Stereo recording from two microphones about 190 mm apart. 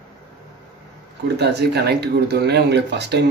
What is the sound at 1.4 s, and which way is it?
Speech, 60° right (ahead or behind).